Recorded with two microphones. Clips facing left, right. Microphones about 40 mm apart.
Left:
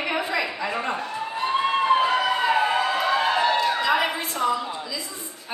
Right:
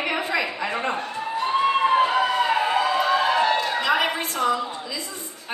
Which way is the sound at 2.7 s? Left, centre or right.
Centre.